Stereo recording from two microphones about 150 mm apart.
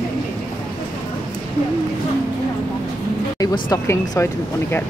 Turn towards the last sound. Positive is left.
turn(degrees=15)  # may be behind; listen again after turning